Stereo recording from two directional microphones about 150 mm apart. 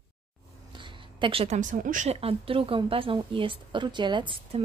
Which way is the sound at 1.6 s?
60° right (ahead or behind).